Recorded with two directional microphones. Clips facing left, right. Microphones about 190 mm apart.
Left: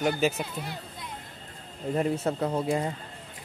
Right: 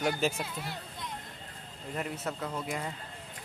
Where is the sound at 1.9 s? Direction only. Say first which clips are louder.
Left 9 dB; 30° left (ahead or behind).